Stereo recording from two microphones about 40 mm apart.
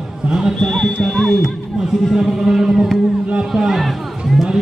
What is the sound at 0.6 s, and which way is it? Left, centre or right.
Speech, centre.